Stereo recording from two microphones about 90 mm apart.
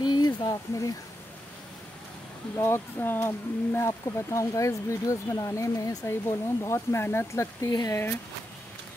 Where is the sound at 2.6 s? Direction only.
25° left (ahead or behind).